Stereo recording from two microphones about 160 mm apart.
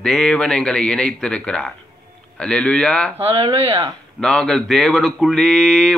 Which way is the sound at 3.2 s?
35° right (ahead or behind).